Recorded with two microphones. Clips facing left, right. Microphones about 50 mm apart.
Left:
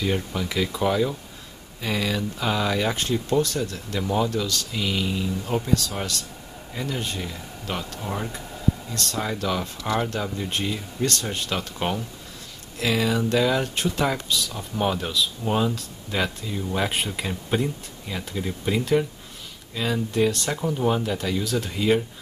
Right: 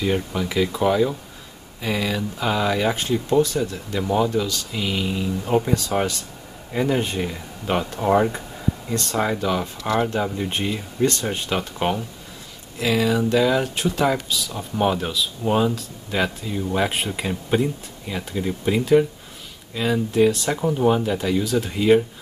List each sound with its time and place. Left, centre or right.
0.0 s speech: centre; by 8.0 s right
8.0 s speech: right
8.9 s speech: right
12.7 s speech: centre